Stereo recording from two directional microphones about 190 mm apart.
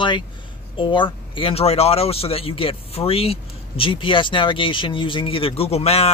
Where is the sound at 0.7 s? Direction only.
25° left (ahead or behind).